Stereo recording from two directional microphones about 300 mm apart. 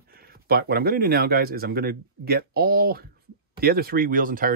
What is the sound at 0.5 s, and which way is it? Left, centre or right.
Speech, right.